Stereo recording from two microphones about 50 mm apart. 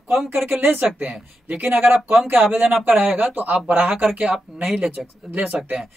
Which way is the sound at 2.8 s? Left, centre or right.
Right.